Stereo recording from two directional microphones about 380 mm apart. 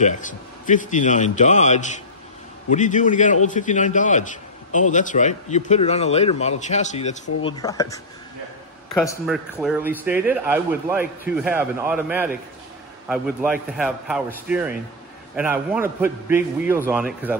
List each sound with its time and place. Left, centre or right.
0.0 s a man's voice: centre